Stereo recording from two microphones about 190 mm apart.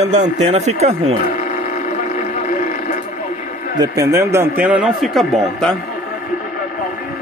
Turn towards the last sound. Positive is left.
turn(degrees=0)  # may be behind; listen again after turning